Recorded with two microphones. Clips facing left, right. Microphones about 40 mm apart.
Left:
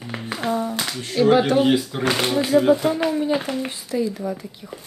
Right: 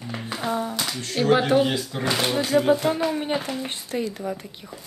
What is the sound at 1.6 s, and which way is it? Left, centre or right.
Speech, centre.